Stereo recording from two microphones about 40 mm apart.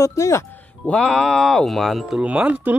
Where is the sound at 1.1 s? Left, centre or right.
Centre.